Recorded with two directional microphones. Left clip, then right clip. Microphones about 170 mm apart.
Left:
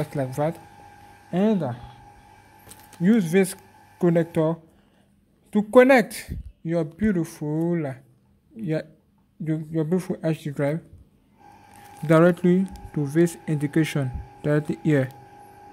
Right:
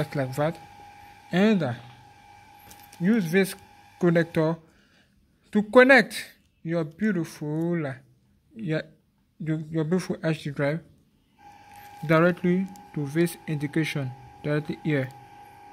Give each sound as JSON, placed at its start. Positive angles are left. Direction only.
{"t": 0.0, "sound": "speech", "side_deg": 0}
{"t": 1.3, "sound": "speech", "side_deg": -10}
{"t": 3.0, "sound": "speech", "side_deg": 15}
{"t": 4.0, "sound": "speech", "side_deg": 0}
{"t": 12.1, "sound": "speech", "side_deg": 15}